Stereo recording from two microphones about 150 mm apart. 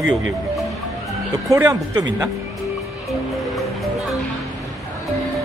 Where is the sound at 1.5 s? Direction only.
15° right (ahead or behind).